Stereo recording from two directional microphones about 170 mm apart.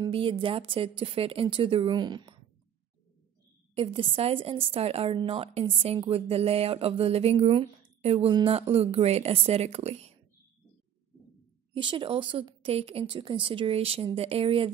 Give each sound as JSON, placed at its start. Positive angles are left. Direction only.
{"t": 0.0, "sound": "a woman's voice", "side_deg": -30}
{"t": 3.7, "sound": "a woman's voice", "side_deg": -35}
{"t": 11.7, "sound": "a woman's voice", "side_deg": -30}